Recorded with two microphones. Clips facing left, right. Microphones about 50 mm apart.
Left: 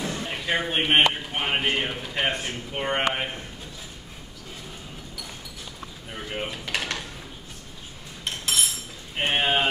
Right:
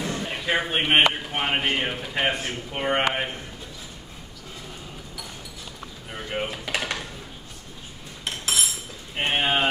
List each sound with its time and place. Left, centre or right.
0.0 s a sound: right
0.3 s a man's voice: centre
6.1 s dishes: centre
8.3 s cutlery: centre